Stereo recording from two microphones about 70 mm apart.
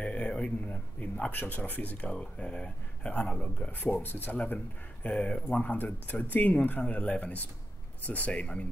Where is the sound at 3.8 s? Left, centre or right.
Left.